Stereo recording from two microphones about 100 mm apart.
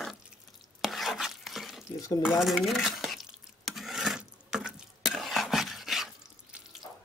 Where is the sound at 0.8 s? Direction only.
Centre (ahead or behind).